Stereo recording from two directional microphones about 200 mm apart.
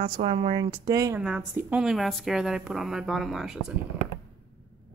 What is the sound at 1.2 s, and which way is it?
Speech, 5° right (ahead or behind).